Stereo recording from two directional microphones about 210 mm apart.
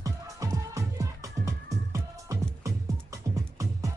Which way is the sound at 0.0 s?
15° right (ahead or behind).